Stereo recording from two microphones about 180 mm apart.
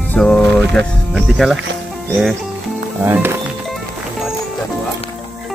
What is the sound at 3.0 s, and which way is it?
Music, 10° right (ahead or behind).